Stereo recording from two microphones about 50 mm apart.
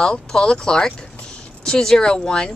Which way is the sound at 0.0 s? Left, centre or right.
Centre.